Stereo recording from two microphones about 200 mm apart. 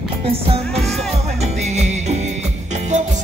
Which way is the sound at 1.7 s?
35° right (ahead or behind).